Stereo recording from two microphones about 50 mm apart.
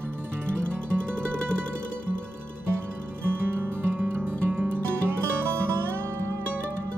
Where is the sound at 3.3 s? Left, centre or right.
Right.